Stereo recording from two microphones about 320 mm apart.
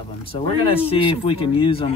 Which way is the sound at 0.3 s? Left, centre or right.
Centre.